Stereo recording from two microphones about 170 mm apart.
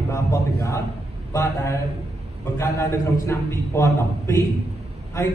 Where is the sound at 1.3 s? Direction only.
15° left (ahead or behind).